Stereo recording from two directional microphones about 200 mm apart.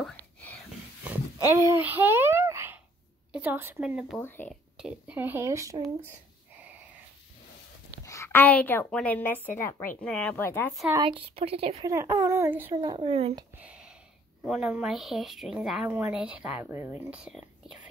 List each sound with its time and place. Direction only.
0.0 s whispering: 10° left (ahead or behind)
1.0 s a sound: 10° right (ahead or behind)
3.3 s speech: 10° right (ahead or behind)
4.2 s a woman's voice: 10° left (ahead or behind)
4.7 s speech: 5° right (ahead or behind)
8.0 s a woman's voice: 15° left (ahead or behind)
10.9 s a woman's voice: 25° right (ahead or behind)
11.8 s speech: 15° right (ahead or behind)
12.7 s a woman's voice: 25° right (ahead or behind)
14.4 s speech: 5° right (ahead or behind)